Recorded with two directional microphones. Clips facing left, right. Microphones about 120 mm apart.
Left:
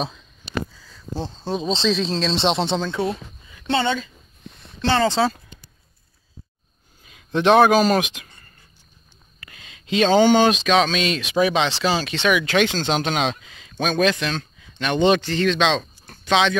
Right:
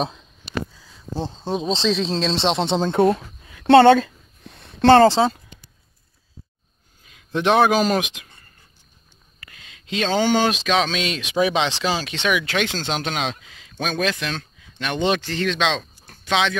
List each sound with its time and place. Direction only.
0.7 s a sound: 10° right (ahead or behind)
1.7 s speech: 10° right (ahead or behind)
2.9 s speech: 50° right (ahead or behind)
3.5 s speech: 70° right (ahead or behind)
4.6 s a sound: 55° right (ahead or behind)
5.0 s speech: 25° right (ahead or behind)
7.3 s speech: 10° right (ahead or behind)
9.4 s speech: 5° left (ahead or behind)